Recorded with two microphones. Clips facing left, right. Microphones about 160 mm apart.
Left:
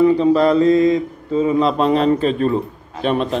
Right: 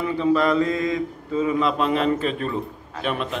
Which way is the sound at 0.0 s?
35° left (ahead or behind).